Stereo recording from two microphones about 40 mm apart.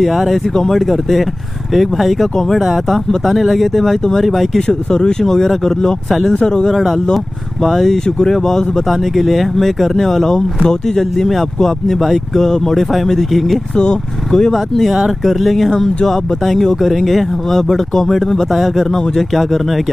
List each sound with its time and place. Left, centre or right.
0.0 s speech: centre
4.6 s speech: left
5.2 s speech: centre
6.7 s speech: centre
13.7 s speech: centre
14.9 s speech: centre